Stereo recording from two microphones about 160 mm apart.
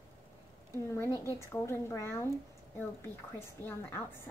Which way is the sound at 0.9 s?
15° left (ahead or behind).